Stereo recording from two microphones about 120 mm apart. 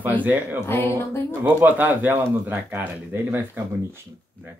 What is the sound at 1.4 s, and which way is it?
Speech, 15° right (ahead or behind).